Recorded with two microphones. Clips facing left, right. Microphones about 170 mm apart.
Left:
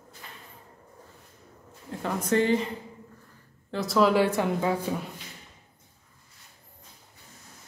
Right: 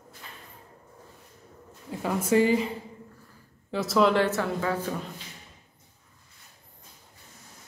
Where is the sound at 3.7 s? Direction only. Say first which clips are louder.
Even; centre (ahead or behind); by 4.7 s 15° left (ahead or behind).